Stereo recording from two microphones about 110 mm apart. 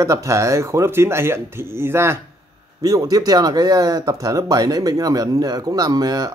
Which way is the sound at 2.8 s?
35° right (ahead or behind).